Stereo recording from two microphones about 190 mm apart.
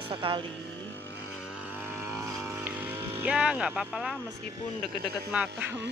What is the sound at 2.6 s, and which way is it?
Speech, 10° right (ahead or behind).